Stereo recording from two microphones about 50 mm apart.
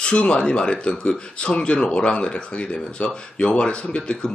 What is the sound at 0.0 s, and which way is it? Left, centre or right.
Speech, left.